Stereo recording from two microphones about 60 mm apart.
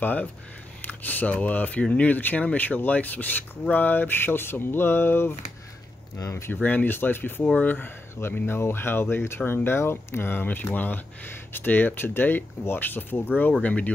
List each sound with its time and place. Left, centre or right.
0.0 s speech: left
6.3 s speech: left
6.6 s speech: left
13.6 s speech: left